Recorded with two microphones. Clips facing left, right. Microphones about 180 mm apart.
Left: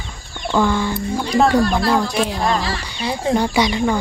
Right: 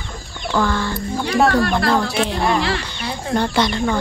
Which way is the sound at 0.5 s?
15° left (ahead or behind).